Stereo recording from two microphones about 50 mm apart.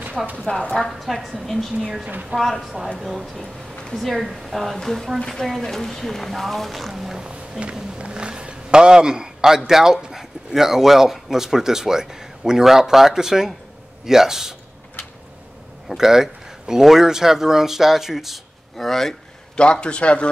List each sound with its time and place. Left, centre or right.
0.2 s speech: centre
0.5 s a man's voice: left
0.7 s speech: centre
1.7 s a man's voice: centre
2.3 s speech: centre
3.0 s a man's voice: centre
7.2 s a sound: right
9.7 s a man's voice: centre
15.9 s speech: centre
19.5 s a man's voice: centre